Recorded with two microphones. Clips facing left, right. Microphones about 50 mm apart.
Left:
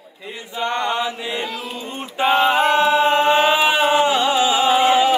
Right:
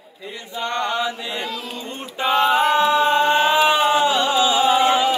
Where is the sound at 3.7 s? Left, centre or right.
Left.